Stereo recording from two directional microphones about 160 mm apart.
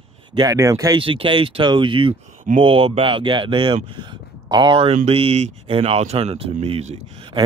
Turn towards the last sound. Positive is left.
turn(degrees=-35)  # may be behind; listen again after turning